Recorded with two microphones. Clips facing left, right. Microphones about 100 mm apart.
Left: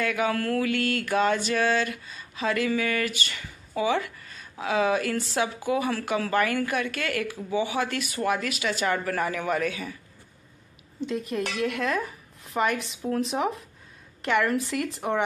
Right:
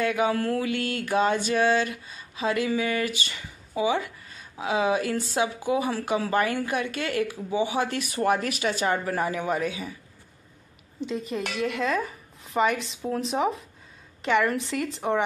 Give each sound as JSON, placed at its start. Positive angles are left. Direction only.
{"t": 0.0, "sound": "mantra", "side_deg": -25}
{"t": 7.5, "sound": "speech", "side_deg": -25}
{"t": 8.8, "sound": "mantra", "side_deg": -20}
{"t": 11.0, "sound": "speech", "side_deg": 0}